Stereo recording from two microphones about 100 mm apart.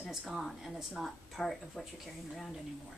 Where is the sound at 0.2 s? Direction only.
Centre (ahead or behind).